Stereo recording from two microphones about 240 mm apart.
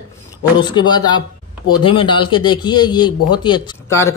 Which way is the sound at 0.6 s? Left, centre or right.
Centre.